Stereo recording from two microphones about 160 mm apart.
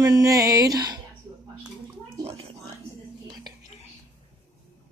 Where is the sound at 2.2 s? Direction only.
40° right (ahead or behind).